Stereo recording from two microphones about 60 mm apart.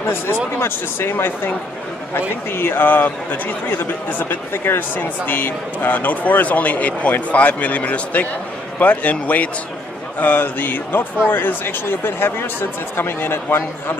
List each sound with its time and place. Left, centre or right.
0.0 s a man's voice: left